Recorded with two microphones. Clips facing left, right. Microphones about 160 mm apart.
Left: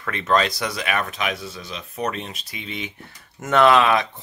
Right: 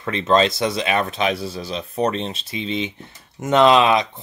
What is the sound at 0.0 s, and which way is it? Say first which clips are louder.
Speech: right 4 dB; 25° right (ahead or behind).